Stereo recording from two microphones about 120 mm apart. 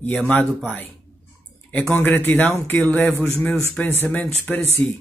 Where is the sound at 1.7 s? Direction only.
15° left (ahead or behind).